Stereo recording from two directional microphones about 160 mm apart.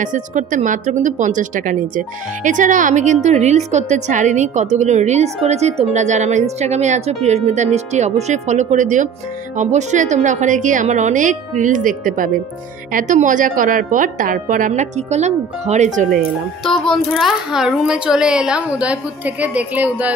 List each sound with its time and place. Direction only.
0.0 s a woman's voice: 50° right (ahead or behind)
16.6 s speech: 5° left (ahead or behind)